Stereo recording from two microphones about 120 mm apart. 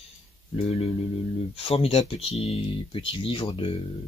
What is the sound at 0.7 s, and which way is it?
Speech, 55° left (ahead or behind).